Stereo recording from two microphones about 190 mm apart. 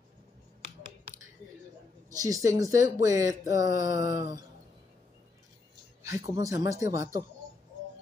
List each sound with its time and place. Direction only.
2.0 s speech: 20° right (ahead or behind)
6.0 s speech: 20° right (ahead or behind)